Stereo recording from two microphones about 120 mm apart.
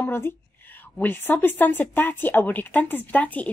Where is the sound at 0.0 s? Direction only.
15° left (ahead or behind).